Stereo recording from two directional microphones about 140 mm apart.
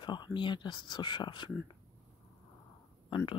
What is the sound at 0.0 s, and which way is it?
Speech, 35° left (ahead or behind).